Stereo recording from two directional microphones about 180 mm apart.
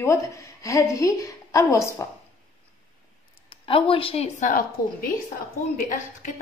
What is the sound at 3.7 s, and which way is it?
Speech, 30° left (ahead or behind).